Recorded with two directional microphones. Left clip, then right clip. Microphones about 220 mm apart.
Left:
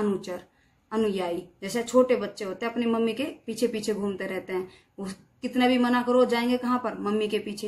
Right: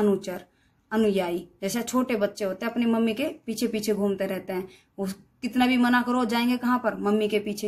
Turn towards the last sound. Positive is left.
turn(degrees=-45)  # may be behind; listen again after turning